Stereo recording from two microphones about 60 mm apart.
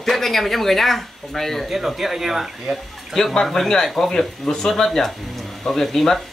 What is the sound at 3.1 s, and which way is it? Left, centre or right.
Speech, centre.